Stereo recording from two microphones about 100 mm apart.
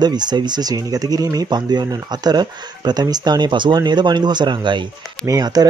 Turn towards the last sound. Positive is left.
turn(degrees=-40)  # may be behind; listen again after turning